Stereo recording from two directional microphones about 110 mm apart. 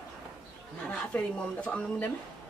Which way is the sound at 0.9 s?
10° left (ahead or behind).